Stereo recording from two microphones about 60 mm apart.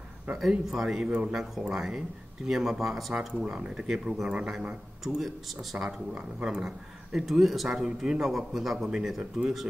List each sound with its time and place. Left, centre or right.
0.3 s speech: centre
1.0 s speech: centre
1.3 s speech: centre
3.3 s speech: centre
5.9 s speech: centre